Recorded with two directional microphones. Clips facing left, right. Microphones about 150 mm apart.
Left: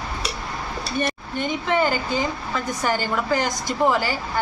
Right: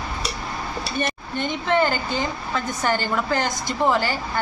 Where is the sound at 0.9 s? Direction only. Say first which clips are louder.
Left 2 dB; 5° left (ahead or behind).